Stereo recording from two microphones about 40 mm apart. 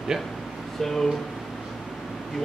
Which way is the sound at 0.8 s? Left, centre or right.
Centre.